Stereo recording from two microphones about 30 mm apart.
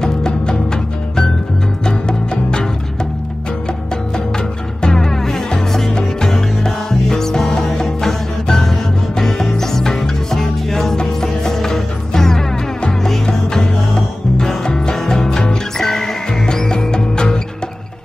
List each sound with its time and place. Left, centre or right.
0.0 s music: left
1.9 s music: left
4.8 s music: centre
16.7 s music: left